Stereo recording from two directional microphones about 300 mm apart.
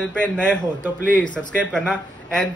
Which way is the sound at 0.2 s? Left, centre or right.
Centre.